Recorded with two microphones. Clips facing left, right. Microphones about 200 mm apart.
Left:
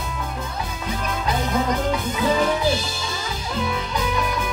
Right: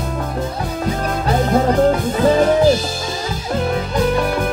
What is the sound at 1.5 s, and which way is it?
Music, 40° right (ahead or behind).